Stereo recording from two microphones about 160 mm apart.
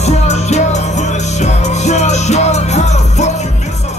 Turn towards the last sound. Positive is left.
turn(degrees=45)  # may be behind; listen again after turning